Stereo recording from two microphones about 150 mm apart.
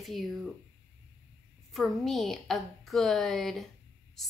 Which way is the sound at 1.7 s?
Centre (ahead or behind).